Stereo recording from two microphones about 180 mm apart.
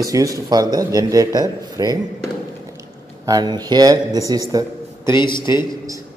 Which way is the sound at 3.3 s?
20° right (ahead or behind).